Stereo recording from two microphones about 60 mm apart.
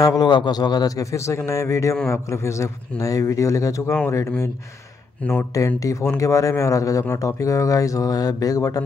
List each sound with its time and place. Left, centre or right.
0.0 s a man's voice: left
1.1 s speech: left
5.8 s speech: left